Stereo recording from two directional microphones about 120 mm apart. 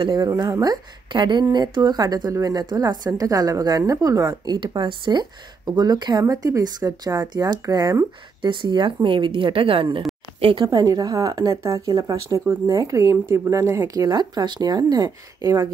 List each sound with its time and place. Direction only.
0.0 s a woman's voice: 30° right (ahead or behind)
10.6 s a woman's voice: 30° right (ahead or behind)